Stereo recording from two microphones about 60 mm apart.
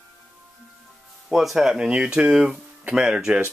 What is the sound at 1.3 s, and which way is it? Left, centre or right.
Speech, centre.